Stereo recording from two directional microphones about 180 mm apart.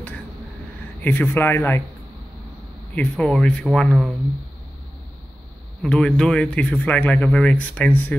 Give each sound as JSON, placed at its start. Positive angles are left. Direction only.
{"t": 1.0, "sound": "speech", "side_deg": 10}
{"t": 2.9, "sound": "speech", "side_deg": 5}
{"t": 5.8, "sound": "speech", "side_deg": 5}